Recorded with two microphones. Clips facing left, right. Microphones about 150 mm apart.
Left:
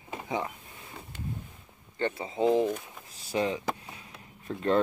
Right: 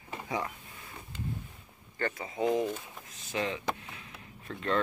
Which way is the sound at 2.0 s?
25° left (ahead or behind).